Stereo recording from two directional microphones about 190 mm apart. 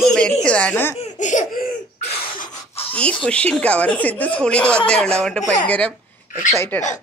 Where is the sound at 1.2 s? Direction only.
45° left (ahead or behind).